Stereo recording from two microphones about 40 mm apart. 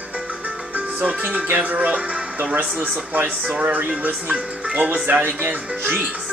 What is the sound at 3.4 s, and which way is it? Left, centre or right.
Speech, right.